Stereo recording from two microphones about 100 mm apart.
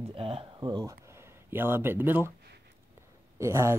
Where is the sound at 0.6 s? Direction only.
40° right (ahead or behind).